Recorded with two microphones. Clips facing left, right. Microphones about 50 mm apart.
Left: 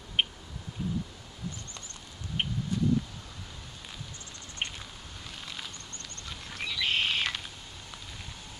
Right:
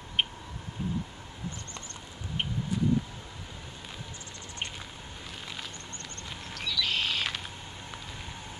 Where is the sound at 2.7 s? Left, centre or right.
Centre.